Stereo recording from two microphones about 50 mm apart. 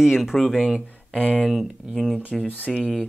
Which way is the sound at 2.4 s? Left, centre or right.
Left.